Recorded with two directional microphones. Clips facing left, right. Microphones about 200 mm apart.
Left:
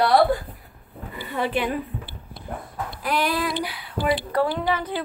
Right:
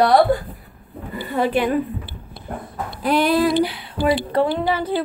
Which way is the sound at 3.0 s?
25° right (ahead or behind).